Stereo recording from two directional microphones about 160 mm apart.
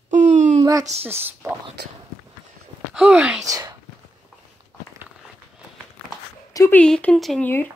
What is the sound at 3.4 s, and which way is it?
Speech, 20° right (ahead or behind).